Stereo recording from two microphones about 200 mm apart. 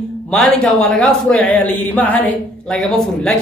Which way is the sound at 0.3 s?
5° left (ahead or behind).